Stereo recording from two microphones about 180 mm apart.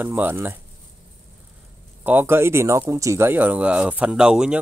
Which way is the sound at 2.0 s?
10° right (ahead or behind).